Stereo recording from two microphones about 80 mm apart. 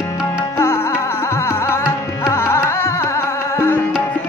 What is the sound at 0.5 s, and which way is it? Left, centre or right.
Music, left.